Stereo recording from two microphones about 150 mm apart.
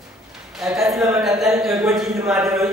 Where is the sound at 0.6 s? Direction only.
Centre (ahead or behind).